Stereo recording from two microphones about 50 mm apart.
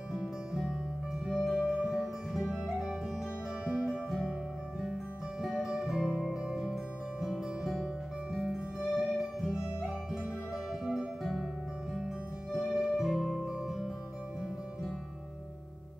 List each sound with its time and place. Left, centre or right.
0.1 s music: centre
1.7 s music: centre
4.8 s music: centre
12.5 s music: centre
13.5 s music: centre